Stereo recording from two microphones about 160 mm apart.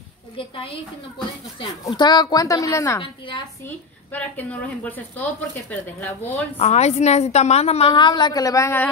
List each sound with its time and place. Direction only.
1.9 s a woman's voice: 25° left (ahead or behind)
3.0 s a woman's voice: 30° left (ahead or behind)
3.6 s a woman's voice: 10° left (ahead or behind)
6.5 s a woman's voice: 40° left (ahead or behind)
7.9 s a woman's voice: 30° left (ahead or behind)